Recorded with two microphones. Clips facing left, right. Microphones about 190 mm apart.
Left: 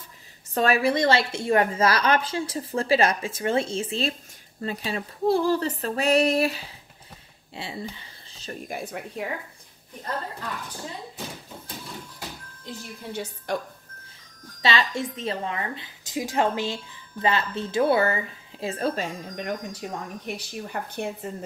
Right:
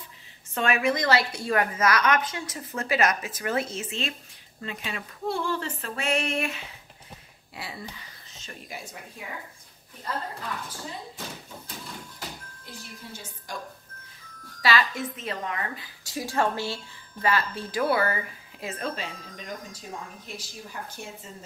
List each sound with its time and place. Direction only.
0.6 s a woman's voice: 35° left (ahead or behind)
8.6 s speech: 60° left (ahead or behind)
13.1 s a woman's voice: 65° left (ahead or behind)
14.6 s a woman's voice: 25° left (ahead or behind); by 19.1 s 40° left (ahead or behind)
19.3 s speech: 65° left (ahead or behind)